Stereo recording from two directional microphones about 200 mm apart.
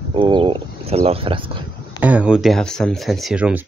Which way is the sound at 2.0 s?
5° right (ahead or behind).